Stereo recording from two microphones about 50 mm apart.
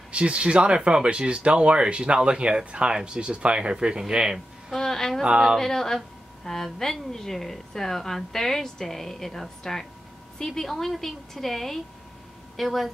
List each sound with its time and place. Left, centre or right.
0.1 s speech: right
4.6 s a woman's voice: centre